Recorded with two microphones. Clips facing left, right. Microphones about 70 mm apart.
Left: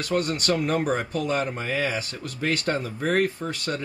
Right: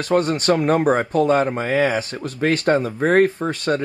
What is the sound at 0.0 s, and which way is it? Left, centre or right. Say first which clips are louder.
Speech: right 7 dB; right.